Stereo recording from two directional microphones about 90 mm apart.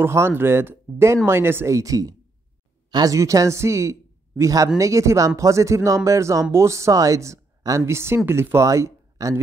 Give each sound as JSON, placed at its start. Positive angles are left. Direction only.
{"t": 0.0, "sound": "speech", "side_deg": -30}
{"t": 3.2, "sound": "a man's voice", "side_deg": -35}